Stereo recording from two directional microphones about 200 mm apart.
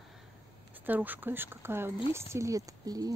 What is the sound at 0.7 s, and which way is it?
Speech, 10° right (ahead or behind).